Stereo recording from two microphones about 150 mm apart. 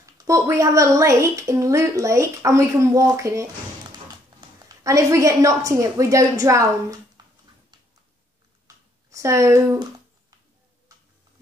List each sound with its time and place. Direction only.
0.2 s a woman's voice: 20° right (ahead or behind)
8.6 s a sound: 20° right (ahead or behind)
10.9 s tick-tock: 25° right (ahead or behind)